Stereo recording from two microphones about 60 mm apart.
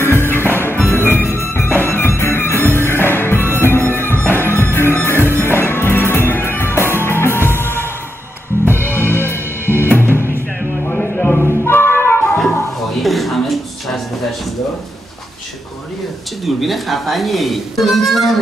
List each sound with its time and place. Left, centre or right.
0.0 s music: left
0.4 s music: right
0.8 s music: left
10.9 s a sound: centre
11.3 s music: left
13.0 s a sound: centre
16.4 s speech: centre